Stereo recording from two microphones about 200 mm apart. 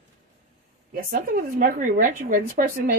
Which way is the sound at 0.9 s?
45° right (ahead or behind).